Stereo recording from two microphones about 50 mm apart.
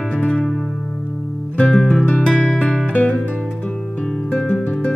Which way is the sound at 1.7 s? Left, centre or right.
Centre.